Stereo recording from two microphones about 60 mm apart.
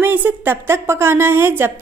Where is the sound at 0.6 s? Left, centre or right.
Right.